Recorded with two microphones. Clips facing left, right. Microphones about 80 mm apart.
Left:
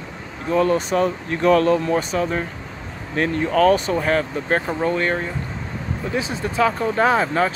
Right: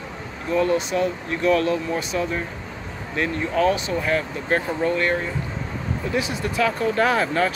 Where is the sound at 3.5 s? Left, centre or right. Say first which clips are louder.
Left 5 dB; left.